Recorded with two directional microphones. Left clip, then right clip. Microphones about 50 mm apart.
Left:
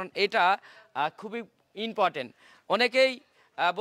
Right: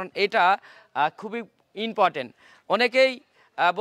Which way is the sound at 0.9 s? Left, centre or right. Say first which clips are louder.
Right 5 dB; right.